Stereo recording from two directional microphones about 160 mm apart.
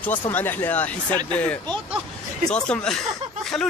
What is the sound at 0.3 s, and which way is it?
A man's voice, 10° left (ahead or behind).